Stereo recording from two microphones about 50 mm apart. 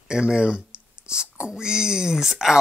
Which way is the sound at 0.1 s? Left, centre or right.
Centre.